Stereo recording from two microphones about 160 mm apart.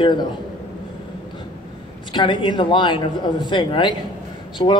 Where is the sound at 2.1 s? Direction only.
30° left (ahead or behind).